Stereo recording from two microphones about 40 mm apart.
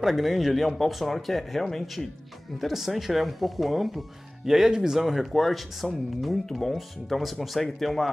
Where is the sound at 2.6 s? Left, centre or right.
Centre.